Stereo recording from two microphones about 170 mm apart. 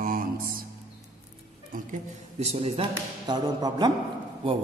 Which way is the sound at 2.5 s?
35° right (ahead or behind).